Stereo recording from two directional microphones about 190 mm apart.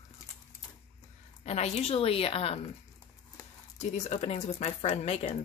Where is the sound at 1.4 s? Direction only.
35° left (ahead or behind).